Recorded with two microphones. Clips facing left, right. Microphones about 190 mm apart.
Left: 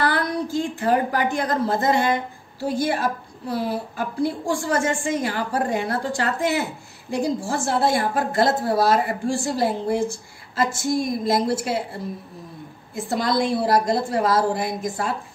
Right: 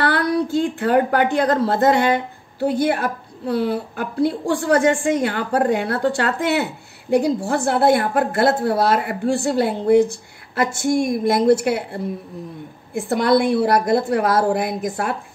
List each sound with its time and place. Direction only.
0.0 s a woman's voice: 65° right (ahead or behind)